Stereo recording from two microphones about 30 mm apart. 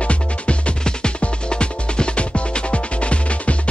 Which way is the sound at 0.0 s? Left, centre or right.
Left.